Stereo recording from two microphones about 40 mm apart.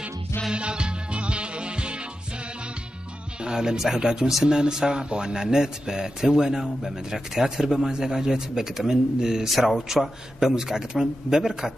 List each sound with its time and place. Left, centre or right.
0.5 s music: right
3.4 s a man's voice: centre
9.5 s speech: centre
10.4 s a man's voice: centre